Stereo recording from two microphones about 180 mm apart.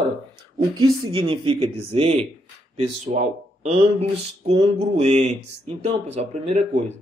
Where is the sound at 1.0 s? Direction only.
30° right (ahead or behind).